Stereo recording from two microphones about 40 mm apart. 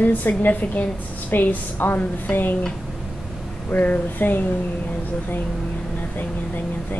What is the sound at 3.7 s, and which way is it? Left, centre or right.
Speech, left.